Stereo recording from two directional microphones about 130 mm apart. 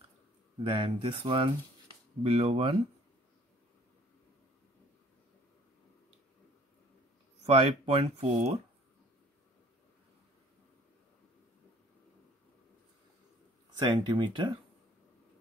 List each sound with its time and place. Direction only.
0.7 s speech: 40° right (ahead or behind)
7.4 s speech: 45° right (ahead or behind)
13.7 s speech: 35° right (ahead or behind)